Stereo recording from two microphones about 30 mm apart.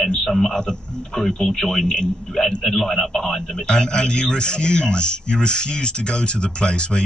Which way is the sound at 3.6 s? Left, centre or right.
Left.